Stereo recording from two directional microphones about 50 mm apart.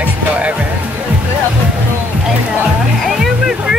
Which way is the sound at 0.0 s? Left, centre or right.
Right.